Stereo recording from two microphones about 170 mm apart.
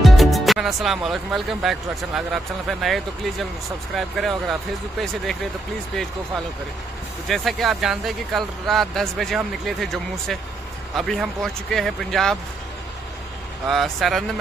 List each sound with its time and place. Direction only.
0.0 s speech: centre (ahead or behind)
7.2 s speech: centre (ahead or behind)
13.7 s speech: centre (ahead or behind)